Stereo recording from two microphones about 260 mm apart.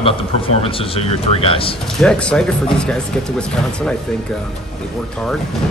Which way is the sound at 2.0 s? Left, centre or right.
Centre.